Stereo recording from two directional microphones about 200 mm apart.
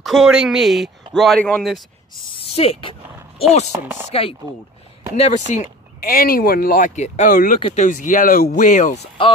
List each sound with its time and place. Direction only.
0.0 s speech: centre (ahead or behind)
2.5 s a sound: 30° left (ahead or behind)
3.8 s chopping: 10° right (ahead or behind)
4.1 s speech: 30° left (ahead or behind)
5.5 s speech: 40° left (ahead or behind)
9.2 s speech: 25° left (ahead or behind)